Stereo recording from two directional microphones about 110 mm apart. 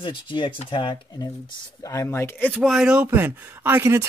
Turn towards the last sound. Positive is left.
turn(degrees=-20)  # may be behind; listen again after turning